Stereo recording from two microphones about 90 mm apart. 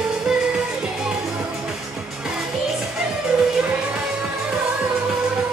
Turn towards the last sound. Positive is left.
turn(degrees=-10)  # may be behind; listen again after turning